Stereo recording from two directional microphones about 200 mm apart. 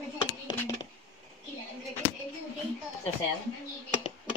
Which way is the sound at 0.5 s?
20° left (ahead or behind).